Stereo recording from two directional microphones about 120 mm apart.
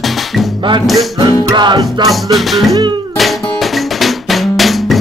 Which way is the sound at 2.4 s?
Centre (ahead or behind).